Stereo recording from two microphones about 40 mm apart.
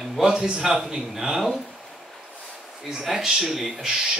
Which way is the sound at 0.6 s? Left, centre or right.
Centre.